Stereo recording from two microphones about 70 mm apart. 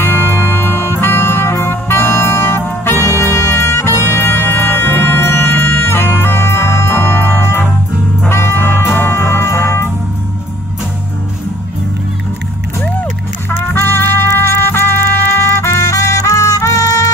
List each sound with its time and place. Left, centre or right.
0.0 s music: left
13.5 s trumpet: left